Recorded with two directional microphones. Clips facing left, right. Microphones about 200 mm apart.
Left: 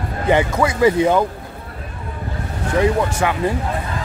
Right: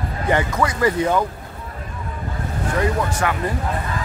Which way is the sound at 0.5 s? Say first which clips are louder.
Left 4 dB; 10° left (ahead or behind).